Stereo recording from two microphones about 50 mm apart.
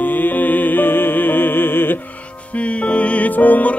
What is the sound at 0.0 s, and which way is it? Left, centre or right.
Music, left.